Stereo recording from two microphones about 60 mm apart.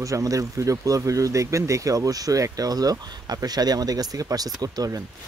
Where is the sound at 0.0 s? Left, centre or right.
Right.